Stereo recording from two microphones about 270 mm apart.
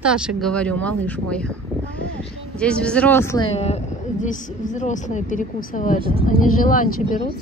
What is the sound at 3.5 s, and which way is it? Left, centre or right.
A woman's voice, left.